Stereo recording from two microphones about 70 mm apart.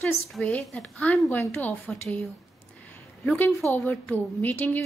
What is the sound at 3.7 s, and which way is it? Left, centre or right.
Speech, left.